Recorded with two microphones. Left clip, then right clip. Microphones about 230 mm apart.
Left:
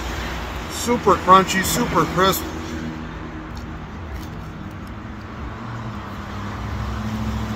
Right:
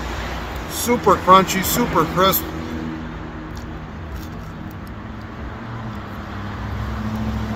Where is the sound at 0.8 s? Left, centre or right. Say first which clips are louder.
Right 1 dB; centre.